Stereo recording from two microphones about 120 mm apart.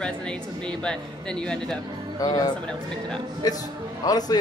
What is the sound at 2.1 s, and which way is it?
Speech, 30° left (ahead or behind).